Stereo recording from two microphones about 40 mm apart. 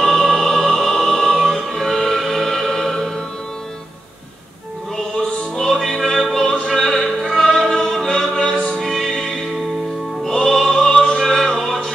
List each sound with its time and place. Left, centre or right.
0.0 s music: centre
4.9 s music: centre
7.2 s opera: centre
7.7 s music: centre
8.7 s music: centre
10.2 s music: centre
10.7 s opera: centre
11.3 s music: centre